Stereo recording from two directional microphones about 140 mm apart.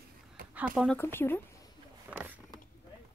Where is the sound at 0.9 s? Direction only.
15° left (ahead or behind).